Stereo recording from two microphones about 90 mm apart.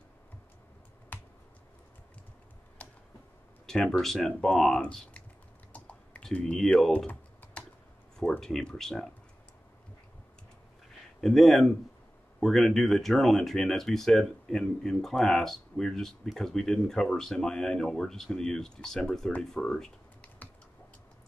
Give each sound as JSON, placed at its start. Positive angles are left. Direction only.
{"t": 1.1, "sound": "finger snapping", "side_deg": 20}
{"t": 3.6, "sound": "speech", "side_deg": 5}
{"t": 5.7, "sound": "typing", "side_deg": 15}
{"t": 6.2, "sound": "speech", "side_deg": 5}
{"t": 8.2, "sound": "speech", "side_deg": 5}
{"t": 11.1, "sound": "speech", "side_deg": 5}
{"t": 20.4, "sound": "typing", "side_deg": 20}